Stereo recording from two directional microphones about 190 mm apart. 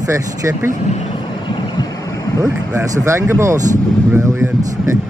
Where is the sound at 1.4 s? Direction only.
20° left (ahead or behind).